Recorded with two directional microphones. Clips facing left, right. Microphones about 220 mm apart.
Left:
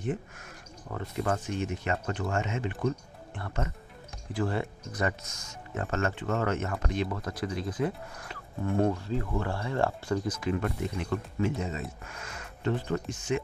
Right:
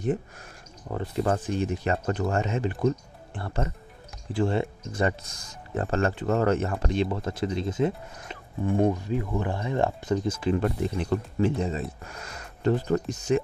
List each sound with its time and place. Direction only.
0.8 s speech: 30° right (ahead or behind)